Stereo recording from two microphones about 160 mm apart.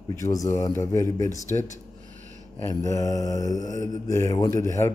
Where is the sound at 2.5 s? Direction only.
20° left (ahead or behind).